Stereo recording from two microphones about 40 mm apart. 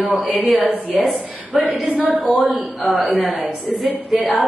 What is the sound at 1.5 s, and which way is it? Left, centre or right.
Speech, centre.